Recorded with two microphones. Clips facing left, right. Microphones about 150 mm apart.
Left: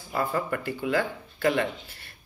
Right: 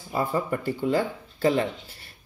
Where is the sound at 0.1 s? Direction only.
20° right (ahead or behind).